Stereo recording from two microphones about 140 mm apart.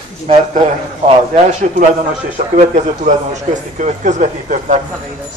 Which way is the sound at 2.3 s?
60° right (ahead or behind).